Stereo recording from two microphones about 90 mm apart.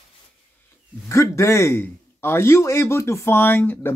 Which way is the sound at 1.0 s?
35° left (ahead or behind).